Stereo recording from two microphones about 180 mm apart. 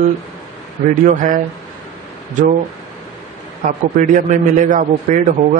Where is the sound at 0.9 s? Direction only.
45° right (ahead or behind).